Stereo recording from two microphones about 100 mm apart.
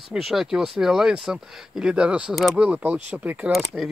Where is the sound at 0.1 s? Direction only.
5° right (ahead or behind).